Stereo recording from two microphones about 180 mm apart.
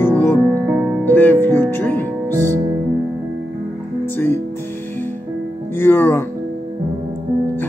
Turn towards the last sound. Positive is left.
turn(degrees=10)  # may be behind; listen again after turning